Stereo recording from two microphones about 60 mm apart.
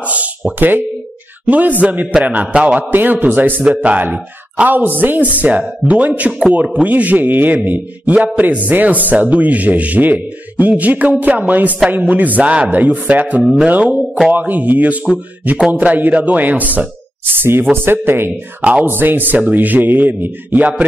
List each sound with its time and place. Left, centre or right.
0.6 s a man's voice: right
2.9 s a man's voice: right
3.6 s a man's voice: right
18.6 s speech: right
18.9 s speech: right